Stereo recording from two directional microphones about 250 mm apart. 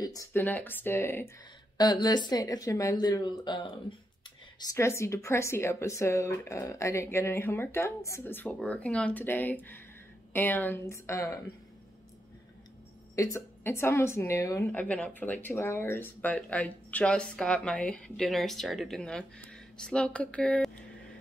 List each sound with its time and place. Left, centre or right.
0.0 s speech: centre
13.1 s a woman's voice: centre